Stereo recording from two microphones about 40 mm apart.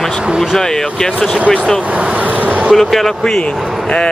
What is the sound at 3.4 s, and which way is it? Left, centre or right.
Speech, left.